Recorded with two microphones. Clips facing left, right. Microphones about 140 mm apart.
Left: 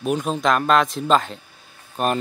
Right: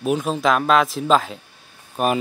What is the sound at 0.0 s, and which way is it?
Speech, centre (ahead or behind).